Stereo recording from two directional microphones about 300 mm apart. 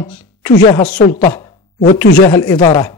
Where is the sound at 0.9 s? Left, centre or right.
Left.